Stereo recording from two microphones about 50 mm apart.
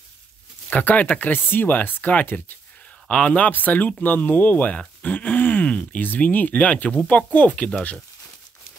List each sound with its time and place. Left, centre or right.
0.7 s speech: left
3.1 s speech: left
3.5 s speech: left